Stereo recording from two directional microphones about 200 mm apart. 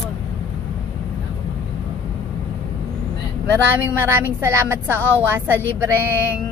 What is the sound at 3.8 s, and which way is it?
A woman's voice, 10° right (ahead or behind).